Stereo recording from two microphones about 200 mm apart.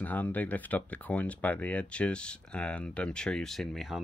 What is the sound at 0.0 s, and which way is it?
Speech, 10° left (ahead or behind).